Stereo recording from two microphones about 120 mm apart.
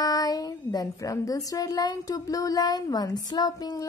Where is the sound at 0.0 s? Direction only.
30° left (ahead or behind).